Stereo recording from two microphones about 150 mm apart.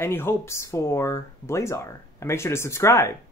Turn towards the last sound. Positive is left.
turn(degrees=15)  # may be behind; listen again after turning